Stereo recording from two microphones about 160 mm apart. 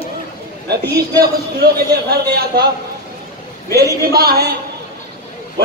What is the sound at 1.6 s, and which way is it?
A man's voice, 80° right.